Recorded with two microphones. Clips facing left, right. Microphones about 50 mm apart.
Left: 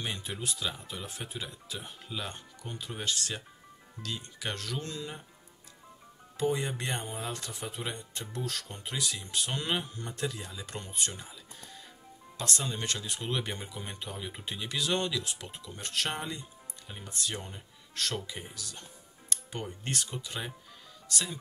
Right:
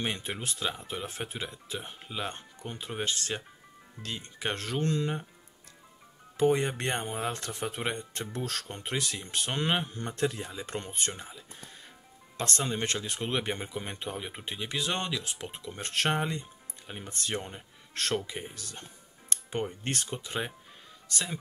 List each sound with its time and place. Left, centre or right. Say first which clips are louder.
0.0 s speech: right 3 dB; right
6.4 s speech: right 5 dB; right
12.4 s speech: right 4 dB; right